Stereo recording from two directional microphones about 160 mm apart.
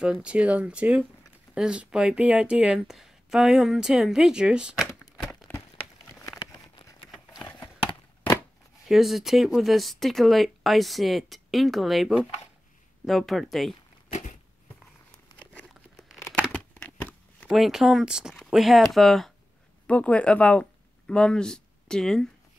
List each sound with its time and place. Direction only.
0.0 s speech: 5° right (ahead or behind)
6.5 s a sound: 20° left (ahead or behind)
8.8 s speech: centre (ahead or behind)
15.3 s crumpling: 25° left (ahead or behind)
16.5 s a sound: 10° left (ahead or behind)
17.5 s speech: 5° right (ahead or behind)